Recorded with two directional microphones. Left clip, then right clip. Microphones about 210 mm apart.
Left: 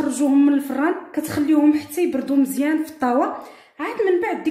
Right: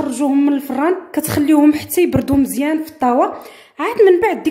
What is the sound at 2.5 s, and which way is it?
Speech, 30° right (ahead or behind).